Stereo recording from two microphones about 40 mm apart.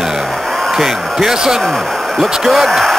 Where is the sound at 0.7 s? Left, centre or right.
Centre.